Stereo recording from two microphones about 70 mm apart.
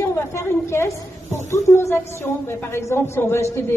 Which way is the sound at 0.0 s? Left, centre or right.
Left.